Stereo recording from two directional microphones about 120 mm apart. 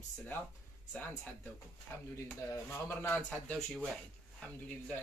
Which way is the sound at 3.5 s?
Centre (ahead or behind).